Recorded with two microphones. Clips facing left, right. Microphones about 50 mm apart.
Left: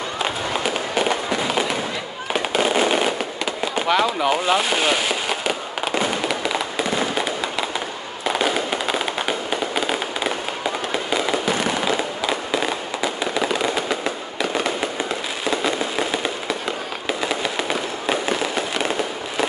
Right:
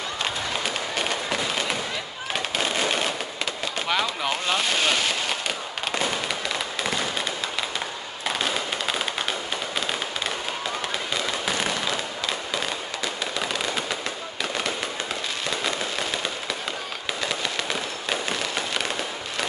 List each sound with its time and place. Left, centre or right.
0.9 s fireworks: centre
2.6 s fireworks: left
3.7 s speech: centre
6.2 s fireworks: centre
8.3 s fireworks: centre
11.6 s fireworks: centre
15.6 s fireworks: centre
18.0 s fireworks: centre